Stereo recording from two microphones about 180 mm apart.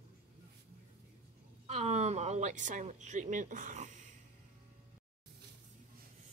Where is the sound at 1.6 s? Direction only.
40° right (ahead or behind).